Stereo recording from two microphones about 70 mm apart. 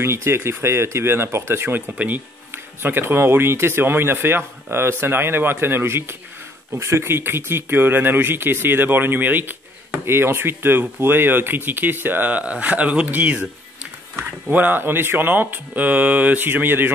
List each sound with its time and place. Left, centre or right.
0.0 s speech: right
14.5 s speech: right